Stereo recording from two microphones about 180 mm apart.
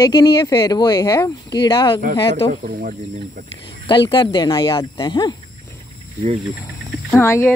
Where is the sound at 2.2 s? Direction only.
30° left (ahead or behind).